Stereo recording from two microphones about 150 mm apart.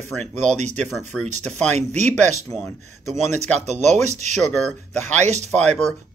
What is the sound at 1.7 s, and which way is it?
Speech, 50° right (ahead or behind).